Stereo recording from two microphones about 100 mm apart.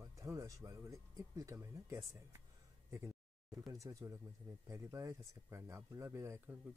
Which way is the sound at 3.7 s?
35° right (ahead or behind).